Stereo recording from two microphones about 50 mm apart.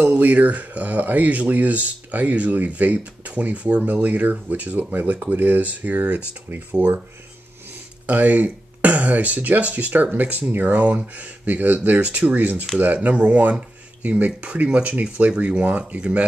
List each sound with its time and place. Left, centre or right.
0.0 s speech: right
8.1 s speech: right